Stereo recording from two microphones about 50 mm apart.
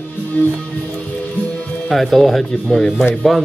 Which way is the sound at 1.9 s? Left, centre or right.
Centre.